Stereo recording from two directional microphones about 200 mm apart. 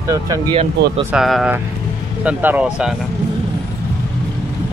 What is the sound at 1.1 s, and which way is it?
Speech, centre (ahead or behind).